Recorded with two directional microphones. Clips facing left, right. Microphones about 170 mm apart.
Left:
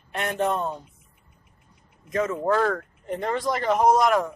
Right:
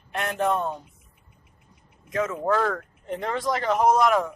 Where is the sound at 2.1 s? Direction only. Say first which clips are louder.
Left 1 dB; centre (ahead or behind).